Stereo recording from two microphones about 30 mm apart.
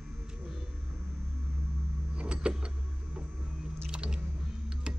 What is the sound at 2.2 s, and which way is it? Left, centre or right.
Vehicle, right.